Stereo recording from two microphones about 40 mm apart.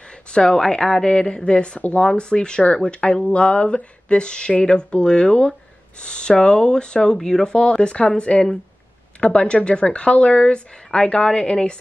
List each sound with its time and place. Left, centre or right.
0.1 s speech: left
1.1 s speech: left
7.5 s speech: left